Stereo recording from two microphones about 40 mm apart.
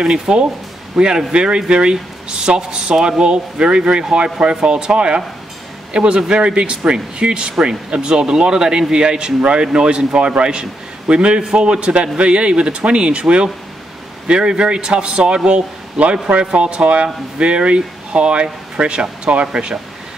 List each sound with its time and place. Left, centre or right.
0.0 s speech: right